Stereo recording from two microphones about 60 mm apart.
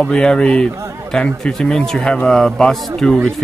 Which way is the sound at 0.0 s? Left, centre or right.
Centre.